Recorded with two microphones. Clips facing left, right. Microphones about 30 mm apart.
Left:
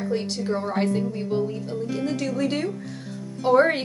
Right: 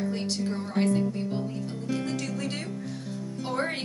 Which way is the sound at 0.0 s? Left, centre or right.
Centre.